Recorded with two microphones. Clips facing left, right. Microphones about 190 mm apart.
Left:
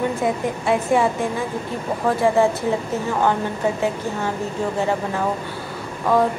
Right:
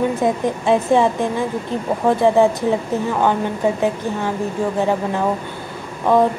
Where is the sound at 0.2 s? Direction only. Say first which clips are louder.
Right 3 dB; 25° right (ahead or behind).